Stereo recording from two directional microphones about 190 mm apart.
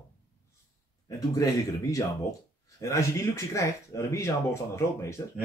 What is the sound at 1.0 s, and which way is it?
Speech, 20° left (ahead or behind).